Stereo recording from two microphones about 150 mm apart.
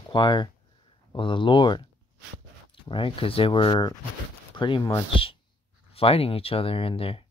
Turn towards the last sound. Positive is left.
turn(degrees=40)  # may be behind; listen again after turning